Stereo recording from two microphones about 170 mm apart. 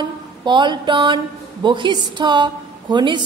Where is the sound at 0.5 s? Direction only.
25° right (ahead or behind).